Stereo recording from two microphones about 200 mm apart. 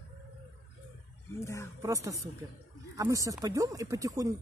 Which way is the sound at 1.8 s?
15° right (ahead or behind).